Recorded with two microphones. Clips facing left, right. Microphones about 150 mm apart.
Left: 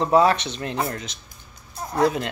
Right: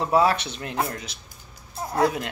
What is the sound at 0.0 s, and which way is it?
Speech, 5° right (ahead or behind).